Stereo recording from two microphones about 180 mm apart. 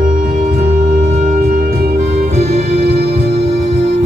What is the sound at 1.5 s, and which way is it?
Music, 50° right (ahead or behind).